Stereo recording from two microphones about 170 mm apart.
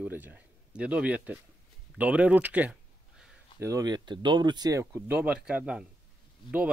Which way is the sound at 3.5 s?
15° right (ahead or behind).